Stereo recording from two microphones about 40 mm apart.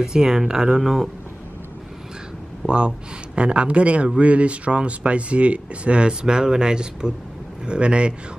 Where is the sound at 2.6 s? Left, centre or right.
Right.